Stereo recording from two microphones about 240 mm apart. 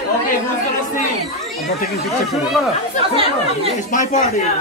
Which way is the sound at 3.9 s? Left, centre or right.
Left.